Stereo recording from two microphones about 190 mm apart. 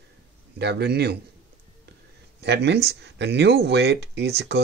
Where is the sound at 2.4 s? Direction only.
65° right (ahead or behind).